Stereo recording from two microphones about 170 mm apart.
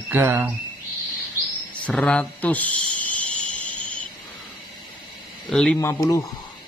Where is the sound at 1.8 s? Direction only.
5° left (ahead or behind).